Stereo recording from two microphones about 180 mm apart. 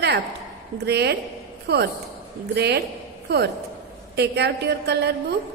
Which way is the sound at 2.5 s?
65° right (ahead or behind).